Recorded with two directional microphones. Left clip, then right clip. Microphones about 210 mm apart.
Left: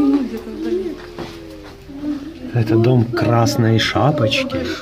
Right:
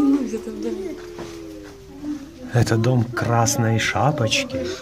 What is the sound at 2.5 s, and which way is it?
Speech, 15° right (ahead or behind).